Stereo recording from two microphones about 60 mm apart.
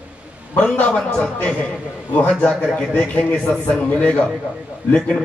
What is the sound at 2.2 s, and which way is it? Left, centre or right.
A man's voice, centre.